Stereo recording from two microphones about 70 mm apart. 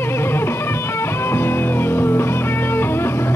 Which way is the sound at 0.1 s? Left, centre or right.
Left.